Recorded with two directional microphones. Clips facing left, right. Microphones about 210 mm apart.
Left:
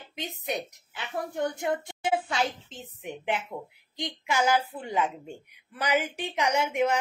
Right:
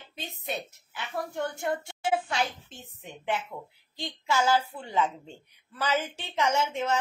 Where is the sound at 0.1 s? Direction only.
15° left (ahead or behind).